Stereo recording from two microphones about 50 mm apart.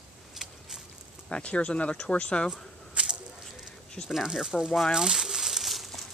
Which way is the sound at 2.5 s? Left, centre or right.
Centre.